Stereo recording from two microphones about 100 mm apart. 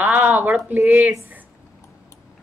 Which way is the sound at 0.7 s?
20° right (ahead or behind).